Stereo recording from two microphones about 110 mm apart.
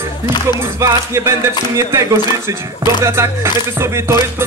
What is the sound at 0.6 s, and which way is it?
Music, 25° right (ahead or behind).